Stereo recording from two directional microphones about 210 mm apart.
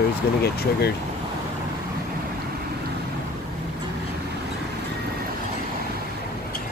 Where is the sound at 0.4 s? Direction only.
50° left (ahead or behind).